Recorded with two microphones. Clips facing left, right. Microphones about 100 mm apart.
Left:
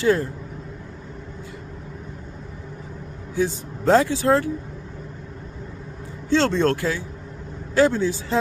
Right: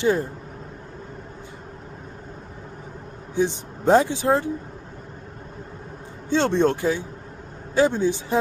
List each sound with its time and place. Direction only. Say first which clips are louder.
0.0 s speech: left 1 dB; 20° right (ahead or behind)
3.3 s speech: right 1 dB; 20° right (ahead or behind)
6.3 s speech: even; 15° right (ahead or behind)